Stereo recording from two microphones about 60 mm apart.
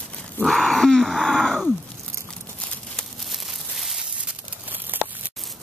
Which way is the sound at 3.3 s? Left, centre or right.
Centre.